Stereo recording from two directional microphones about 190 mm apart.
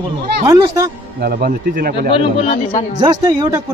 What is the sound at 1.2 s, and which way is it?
Speech, 55° right (ahead or behind).